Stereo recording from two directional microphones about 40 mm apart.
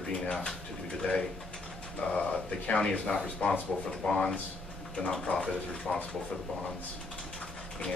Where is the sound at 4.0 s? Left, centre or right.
Centre.